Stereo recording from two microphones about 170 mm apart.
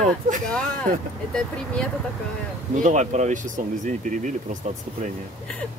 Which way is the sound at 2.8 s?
45° right (ahead or behind).